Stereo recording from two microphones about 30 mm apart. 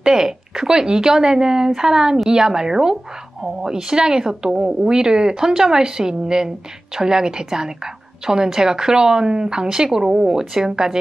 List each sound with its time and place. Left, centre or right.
0.0 s speech: right